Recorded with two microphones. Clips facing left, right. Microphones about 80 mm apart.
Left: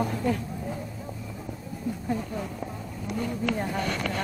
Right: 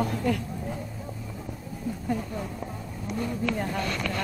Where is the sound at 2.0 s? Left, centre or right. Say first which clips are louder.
Right 1 dB; centre.